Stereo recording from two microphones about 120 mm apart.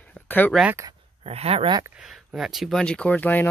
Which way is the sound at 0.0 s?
10° left (ahead or behind).